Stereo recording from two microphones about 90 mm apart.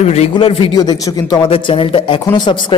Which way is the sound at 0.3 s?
80° left.